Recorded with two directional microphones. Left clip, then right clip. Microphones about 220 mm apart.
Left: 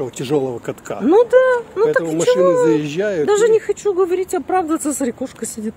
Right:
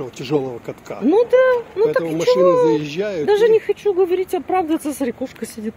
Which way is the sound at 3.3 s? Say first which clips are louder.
Right 1 dB; 10° left (ahead or behind).